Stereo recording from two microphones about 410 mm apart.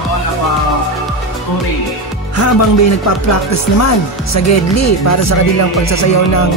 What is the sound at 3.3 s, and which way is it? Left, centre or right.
Speech, left.